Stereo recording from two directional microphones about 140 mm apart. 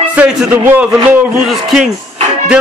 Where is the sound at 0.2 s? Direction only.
10° right (ahead or behind).